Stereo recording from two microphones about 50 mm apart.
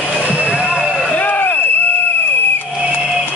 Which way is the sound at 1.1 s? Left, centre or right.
Left.